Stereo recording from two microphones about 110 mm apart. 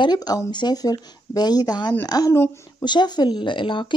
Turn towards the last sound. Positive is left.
turn(degrees=50)  # may be behind; listen again after turning